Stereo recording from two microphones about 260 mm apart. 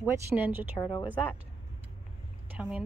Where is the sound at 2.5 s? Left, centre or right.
Centre.